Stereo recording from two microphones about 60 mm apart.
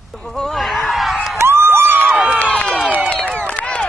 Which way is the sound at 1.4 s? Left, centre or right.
Right.